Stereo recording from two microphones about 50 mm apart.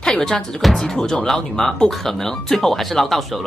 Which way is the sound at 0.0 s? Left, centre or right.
Centre.